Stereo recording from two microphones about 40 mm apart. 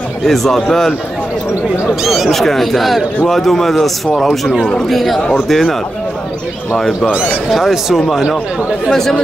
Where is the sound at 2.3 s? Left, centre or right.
Centre.